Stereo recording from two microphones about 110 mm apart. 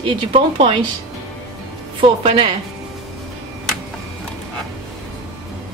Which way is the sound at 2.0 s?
55° right (ahead or behind).